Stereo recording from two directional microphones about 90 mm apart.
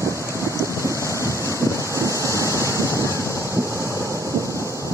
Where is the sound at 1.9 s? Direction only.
35° right (ahead or behind).